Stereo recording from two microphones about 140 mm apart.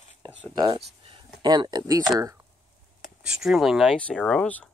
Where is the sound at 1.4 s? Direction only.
30° right (ahead or behind).